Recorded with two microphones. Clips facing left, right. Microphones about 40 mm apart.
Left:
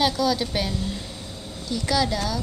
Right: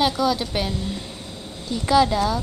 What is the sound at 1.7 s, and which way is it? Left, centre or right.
Speech, right.